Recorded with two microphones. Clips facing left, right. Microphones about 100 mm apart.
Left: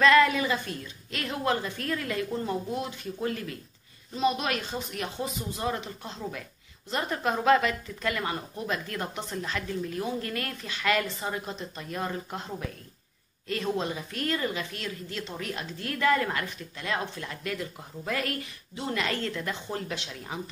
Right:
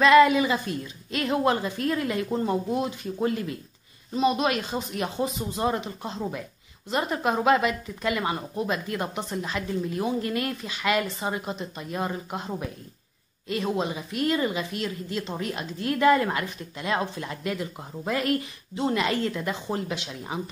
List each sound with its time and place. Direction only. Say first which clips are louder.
0.0 s a woman's voice: right 4 dB; 15° right (ahead or behind)